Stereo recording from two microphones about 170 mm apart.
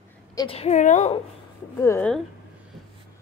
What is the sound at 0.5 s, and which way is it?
Speech, 40° left (ahead or behind).